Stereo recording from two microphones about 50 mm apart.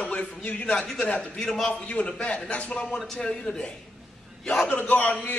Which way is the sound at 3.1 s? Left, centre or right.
Centre.